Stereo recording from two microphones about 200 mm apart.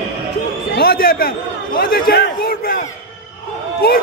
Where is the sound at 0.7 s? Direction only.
50° left (ahead or behind).